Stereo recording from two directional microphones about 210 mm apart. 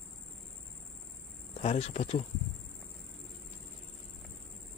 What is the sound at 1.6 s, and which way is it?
Speech, 30° left (ahead or behind).